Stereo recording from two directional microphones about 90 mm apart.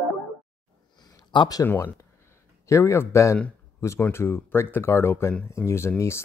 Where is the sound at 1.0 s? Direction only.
55° left (ahead or behind).